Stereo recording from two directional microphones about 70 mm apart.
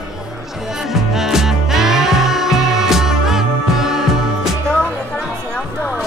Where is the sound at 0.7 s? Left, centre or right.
Centre.